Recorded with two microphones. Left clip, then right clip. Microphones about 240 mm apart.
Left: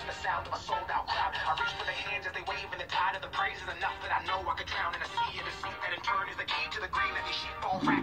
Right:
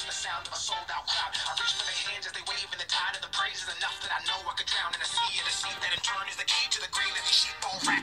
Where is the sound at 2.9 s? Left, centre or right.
Right.